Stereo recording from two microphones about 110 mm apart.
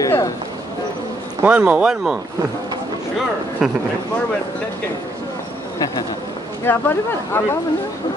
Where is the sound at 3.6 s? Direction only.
5° right (ahead or behind).